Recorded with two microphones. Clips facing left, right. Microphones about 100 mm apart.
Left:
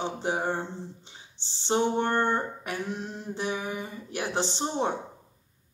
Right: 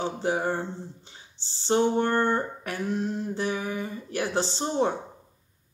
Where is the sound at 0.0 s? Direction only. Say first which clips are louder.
Right 2 dB; 20° left (ahead or behind).